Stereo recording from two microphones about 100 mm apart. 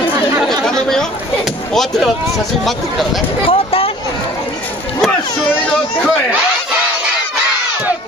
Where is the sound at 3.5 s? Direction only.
70° left (ahead or behind).